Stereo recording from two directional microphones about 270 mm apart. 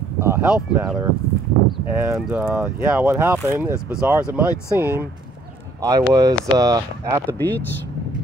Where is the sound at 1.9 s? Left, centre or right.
Centre.